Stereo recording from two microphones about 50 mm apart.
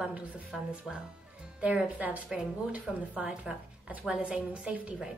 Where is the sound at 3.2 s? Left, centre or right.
Centre.